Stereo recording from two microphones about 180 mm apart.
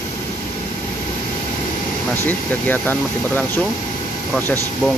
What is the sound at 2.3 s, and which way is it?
Speech, 10° left (ahead or behind).